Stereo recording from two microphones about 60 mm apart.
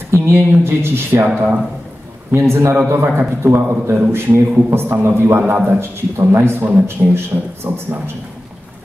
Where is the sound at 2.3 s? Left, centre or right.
Right.